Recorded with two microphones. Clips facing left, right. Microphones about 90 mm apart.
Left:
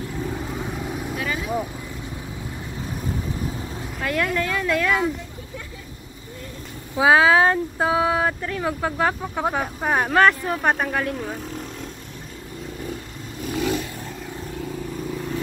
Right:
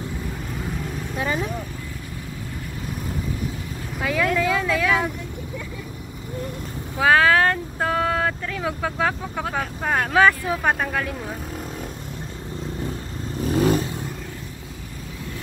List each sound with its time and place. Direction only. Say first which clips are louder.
0.7 s vehicle: left 2 dB; 10° left (ahead or behind)
1.1 s vehicle: right 6 dB; 30° right (ahead or behind)
4.0 s speech: right 2 dB; centre (ahead or behind)
7.0 s speech: left 1 dB; 15° left (ahead or behind)
10.1 s speech: right 1 dB; centre (ahead or behind)
13.5 s vehicle: right 4 dB; 35° right (ahead or behind)